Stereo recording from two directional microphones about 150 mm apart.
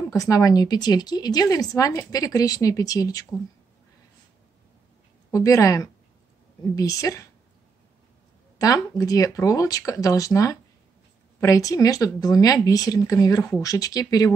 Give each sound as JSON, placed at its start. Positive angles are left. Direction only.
{"t": 0.1, "sound": "speech", "side_deg": 20}
{"t": 5.3, "sound": "speech", "side_deg": 20}
{"t": 8.5, "sound": "speech", "side_deg": 20}